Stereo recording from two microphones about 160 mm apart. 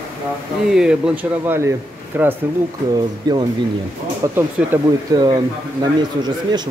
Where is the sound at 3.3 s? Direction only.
25° right (ahead or behind).